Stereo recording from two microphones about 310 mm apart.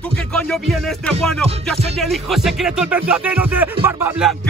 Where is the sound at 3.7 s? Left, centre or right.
Centre.